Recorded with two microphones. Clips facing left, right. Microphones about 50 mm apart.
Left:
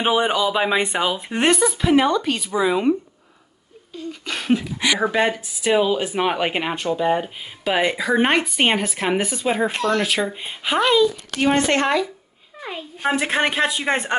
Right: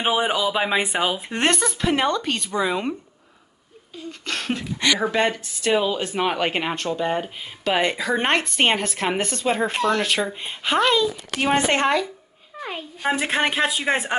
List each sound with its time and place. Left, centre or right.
0.0 s speech: centre
4.1 s speech: centre
11.5 s a woman's voice: centre
11.8 s speech: centre